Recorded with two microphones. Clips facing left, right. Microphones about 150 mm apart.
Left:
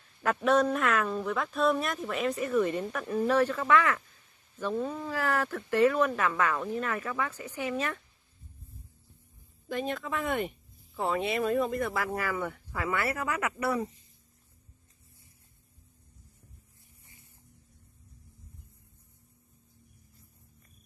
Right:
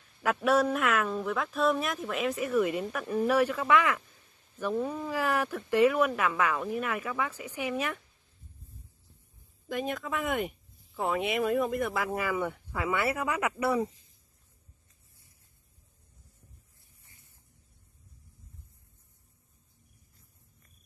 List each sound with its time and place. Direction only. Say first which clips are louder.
0.2 s speech: even; 5° right (ahead or behind)
9.7 s speech: even; 15° right (ahead or behind)
10.0 s speech: even; centre (ahead or behind)
11.2 s speech: right 1 dB; 15° right (ahead or behind)